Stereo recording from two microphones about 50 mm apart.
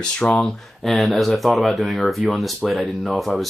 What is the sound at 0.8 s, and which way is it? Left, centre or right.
Speech, centre.